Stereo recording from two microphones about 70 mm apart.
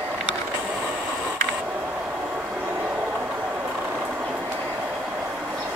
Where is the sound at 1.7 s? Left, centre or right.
Right.